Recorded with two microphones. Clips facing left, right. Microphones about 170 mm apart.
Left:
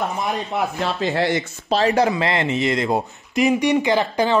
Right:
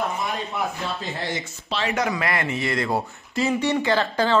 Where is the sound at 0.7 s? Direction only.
90° left.